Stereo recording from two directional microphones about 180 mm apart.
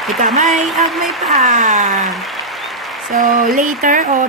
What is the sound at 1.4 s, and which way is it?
Speech, 45° right (ahead or behind).